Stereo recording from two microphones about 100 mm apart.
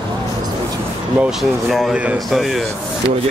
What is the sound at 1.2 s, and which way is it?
Speech, centre (ahead or behind).